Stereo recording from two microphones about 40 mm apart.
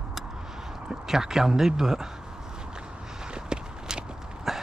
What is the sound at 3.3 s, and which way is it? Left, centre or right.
Walk, right.